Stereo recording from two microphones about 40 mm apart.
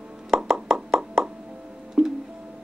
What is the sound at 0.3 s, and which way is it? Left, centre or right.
Plop, centre.